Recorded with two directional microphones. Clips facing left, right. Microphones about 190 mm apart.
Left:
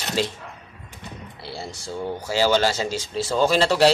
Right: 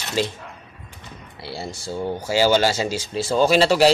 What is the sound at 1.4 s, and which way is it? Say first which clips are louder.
Speech: right 4 dB; 10° right (ahead or behind).